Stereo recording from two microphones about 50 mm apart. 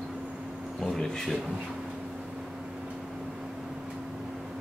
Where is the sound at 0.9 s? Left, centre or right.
Centre.